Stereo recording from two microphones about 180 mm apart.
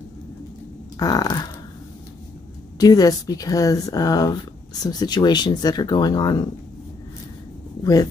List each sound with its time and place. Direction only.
0.9 s speech: 20° left (ahead or behind)
2.8 s speech: 20° left (ahead or behind)
7.8 s speech: 20° left (ahead or behind)